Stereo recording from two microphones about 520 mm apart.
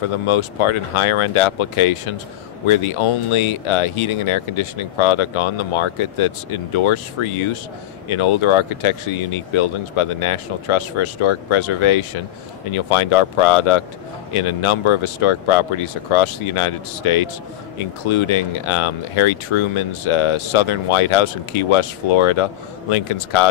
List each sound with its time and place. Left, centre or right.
0.3 s speech: left